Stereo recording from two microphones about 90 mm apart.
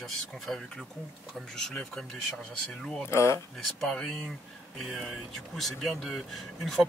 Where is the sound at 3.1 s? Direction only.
30° left (ahead or behind).